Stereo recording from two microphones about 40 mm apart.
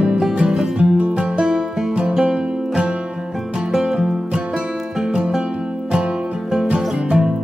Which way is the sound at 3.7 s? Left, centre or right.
Centre.